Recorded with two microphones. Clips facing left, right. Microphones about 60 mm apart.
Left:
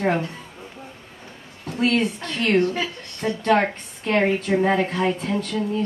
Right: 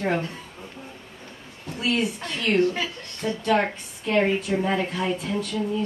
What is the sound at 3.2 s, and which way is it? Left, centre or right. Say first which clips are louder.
Speech: left 4 dB; left.